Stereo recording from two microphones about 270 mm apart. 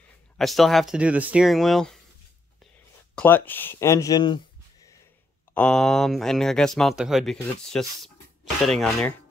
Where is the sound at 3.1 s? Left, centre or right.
Centre.